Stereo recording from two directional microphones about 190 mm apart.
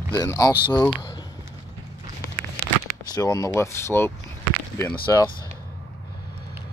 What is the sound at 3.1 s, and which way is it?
Speech, 20° left (ahead or behind).